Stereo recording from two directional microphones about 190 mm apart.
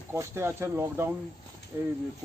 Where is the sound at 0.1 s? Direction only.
15° right (ahead or behind).